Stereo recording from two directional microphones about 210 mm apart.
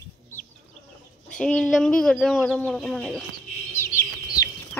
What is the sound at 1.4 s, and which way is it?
Speech, centre (ahead or behind).